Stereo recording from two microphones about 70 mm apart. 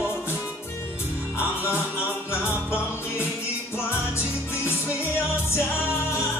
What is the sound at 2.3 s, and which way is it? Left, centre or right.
Music, left.